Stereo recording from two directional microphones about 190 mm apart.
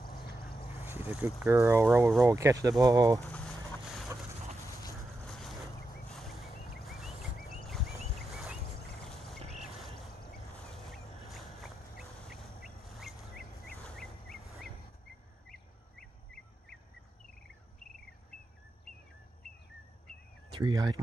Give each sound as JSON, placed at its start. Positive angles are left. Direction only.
{"t": 0.0, "sound": "boat", "side_deg": 55}
{"t": 0.6, "sound": "boat", "side_deg": 30}
{"t": 1.1, "sound": "speech", "side_deg": -10}
{"t": 3.2, "sound": "a sound", "side_deg": 5}
{"t": 4.6, "sound": "dog", "side_deg": 15}
{"t": 4.9, "sound": "boat", "side_deg": 0}
{"t": 6.1, "sound": "a sound", "side_deg": 0}
{"t": 9.0, "sound": "frog", "side_deg": 0}
{"t": 11.2, "sound": "a sound", "side_deg": 0}
{"t": 15.4, "sound": "bird vocalization", "side_deg": 0}
{"t": 20.5, "sound": "speech", "side_deg": -20}